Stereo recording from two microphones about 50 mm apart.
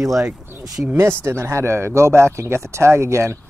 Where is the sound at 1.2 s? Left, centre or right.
Right.